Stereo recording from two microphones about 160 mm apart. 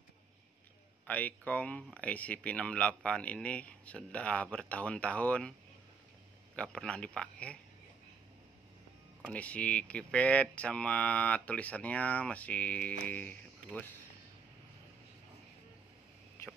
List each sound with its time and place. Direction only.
1.0 s speech: 10° left (ahead or behind)
6.5 s speech: 5° left (ahead or behind)
9.3 s speech: 10° left (ahead or behind)